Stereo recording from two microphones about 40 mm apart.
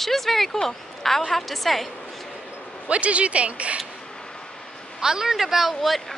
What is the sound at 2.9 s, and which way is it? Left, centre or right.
Speech, right.